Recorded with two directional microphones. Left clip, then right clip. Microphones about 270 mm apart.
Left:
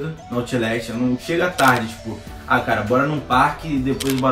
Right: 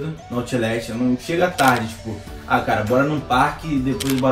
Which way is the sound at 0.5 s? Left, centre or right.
Centre.